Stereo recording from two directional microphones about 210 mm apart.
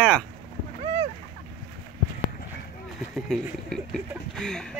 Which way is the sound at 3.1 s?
Centre (ahead or behind).